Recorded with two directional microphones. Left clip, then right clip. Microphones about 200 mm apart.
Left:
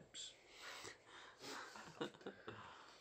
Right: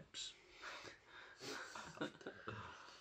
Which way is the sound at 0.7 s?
55° left (ahead or behind).